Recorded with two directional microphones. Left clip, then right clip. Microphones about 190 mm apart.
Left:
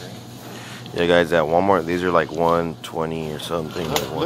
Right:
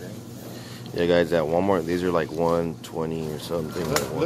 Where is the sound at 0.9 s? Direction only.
10° right (ahead or behind).